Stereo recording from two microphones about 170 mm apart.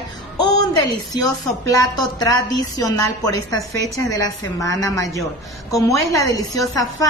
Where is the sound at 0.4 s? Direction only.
25° left (ahead or behind).